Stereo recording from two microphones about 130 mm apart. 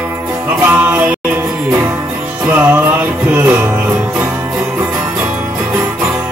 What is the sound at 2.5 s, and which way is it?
Music, 15° right (ahead or behind).